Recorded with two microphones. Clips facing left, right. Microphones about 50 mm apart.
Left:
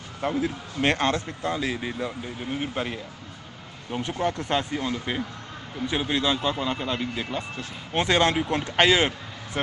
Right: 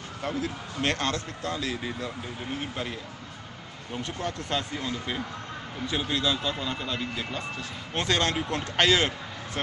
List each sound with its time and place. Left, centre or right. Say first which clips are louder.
0.2 s speech: left 5 dB; left